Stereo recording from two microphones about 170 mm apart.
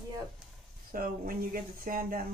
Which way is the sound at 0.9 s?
60° right (ahead or behind).